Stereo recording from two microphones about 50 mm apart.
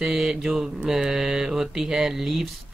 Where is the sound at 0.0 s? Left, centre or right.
Centre.